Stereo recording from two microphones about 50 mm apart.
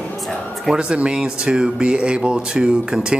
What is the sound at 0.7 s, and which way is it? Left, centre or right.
Speech, right.